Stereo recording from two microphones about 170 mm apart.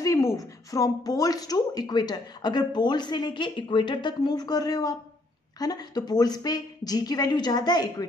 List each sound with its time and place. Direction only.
0.0 s speech: 20° left (ahead or behind)